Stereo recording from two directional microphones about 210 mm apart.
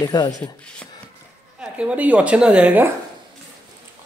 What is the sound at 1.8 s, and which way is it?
Speech, 5° right (ahead or behind).